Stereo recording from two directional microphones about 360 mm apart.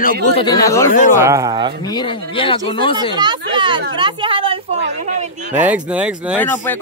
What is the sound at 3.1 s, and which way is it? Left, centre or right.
A woman's voice, centre.